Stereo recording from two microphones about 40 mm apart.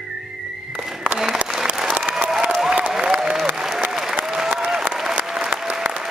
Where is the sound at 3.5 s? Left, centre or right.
Centre.